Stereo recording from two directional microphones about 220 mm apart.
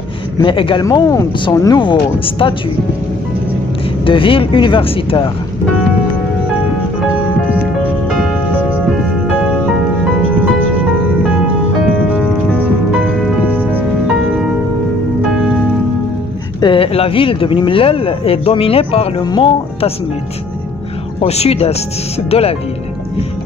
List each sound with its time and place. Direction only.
0.4 s speech: 25° left (ahead or behind)
4.0 s speech: 25° left (ahead or behind)
7.1 s music: 5° right (ahead or behind)
13.2 s music: 10° right (ahead or behind)
16.6 s speech: 25° left (ahead or behind)
21.2 s speech: 30° left (ahead or behind)